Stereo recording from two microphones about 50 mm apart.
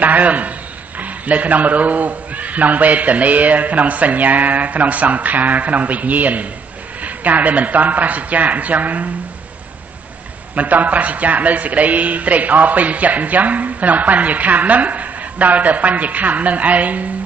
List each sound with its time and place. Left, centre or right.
0.0 s speech: right
10.5 s speech: right